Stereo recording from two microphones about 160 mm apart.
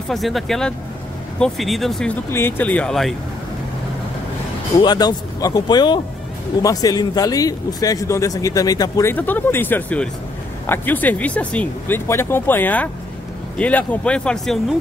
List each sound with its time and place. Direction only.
0.1 s speech: centre (ahead or behind)
2.3 s speech: 15° left (ahead or behind)
4.7 s speech: 25° left (ahead or behind); by 14.8 s centre (ahead or behind)